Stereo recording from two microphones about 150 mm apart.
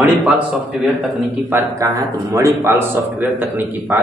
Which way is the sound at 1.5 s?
20° right (ahead or behind).